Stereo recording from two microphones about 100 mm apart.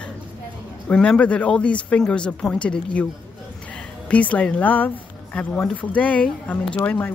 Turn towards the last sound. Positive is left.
turn(degrees=20)  # may be behind; listen again after turning